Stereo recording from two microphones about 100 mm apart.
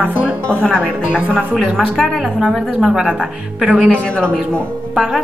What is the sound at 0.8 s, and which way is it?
A woman's voice, 10° right (ahead or behind).